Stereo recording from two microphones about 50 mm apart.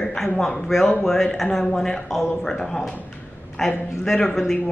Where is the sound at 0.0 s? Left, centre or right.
Centre.